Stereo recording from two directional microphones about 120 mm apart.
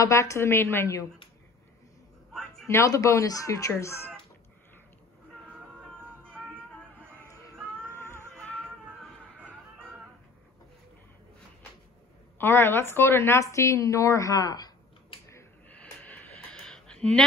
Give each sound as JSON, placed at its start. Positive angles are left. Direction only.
{"t": 0.0, "sound": "speech", "side_deg": 25}
{"t": 2.6, "sound": "speech", "side_deg": 25}
{"t": 7.1, "sound": "a sound", "side_deg": -20}
{"t": 7.9, "sound": "music", "side_deg": 20}
{"t": 8.4, "sound": "music", "side_deg": 10}
{"t": 12.4, "sound": "a woman's voice", "side_deg": 20}
{"t": 15.7, "sound": "a sound", "side_deg": 15}